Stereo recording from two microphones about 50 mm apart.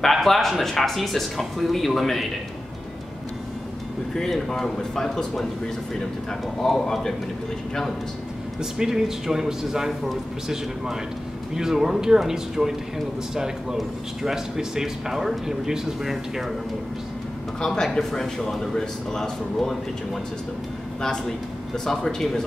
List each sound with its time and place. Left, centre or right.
0.0 s speech: centre
4.1 s speech: centre
6.7 s speech: centre
8.5 s speech: centre
17.6 s speech: centre
21.7 s speech: centre